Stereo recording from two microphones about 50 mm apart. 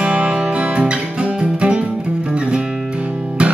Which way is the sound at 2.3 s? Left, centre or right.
Centre.